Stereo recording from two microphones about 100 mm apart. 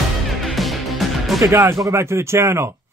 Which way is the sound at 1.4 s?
25° right (ahead or behind).